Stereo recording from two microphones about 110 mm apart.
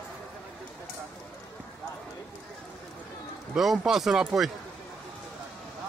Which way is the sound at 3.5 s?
Centre (ahead or behind).